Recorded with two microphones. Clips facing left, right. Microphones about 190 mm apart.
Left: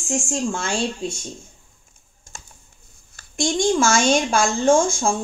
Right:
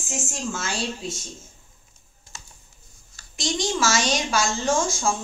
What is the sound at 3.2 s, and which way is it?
A woman's voice, 50° left (ahead or behind).